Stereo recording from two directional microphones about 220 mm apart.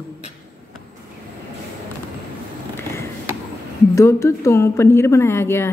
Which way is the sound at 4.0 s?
15° left (ahead or behind).